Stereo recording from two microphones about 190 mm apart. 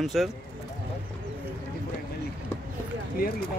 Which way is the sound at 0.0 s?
Centre (ahead or behind).